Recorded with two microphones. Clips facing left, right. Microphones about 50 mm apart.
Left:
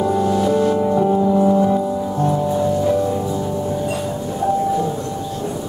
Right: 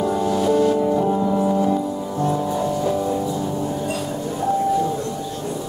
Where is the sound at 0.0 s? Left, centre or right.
Centre.